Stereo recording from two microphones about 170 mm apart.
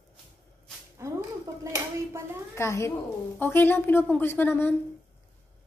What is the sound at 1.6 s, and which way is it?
Speech, 15° right (ahead or behind).